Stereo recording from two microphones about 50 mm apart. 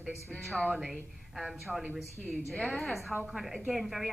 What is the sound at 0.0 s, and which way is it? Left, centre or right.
A woman's voice, centre.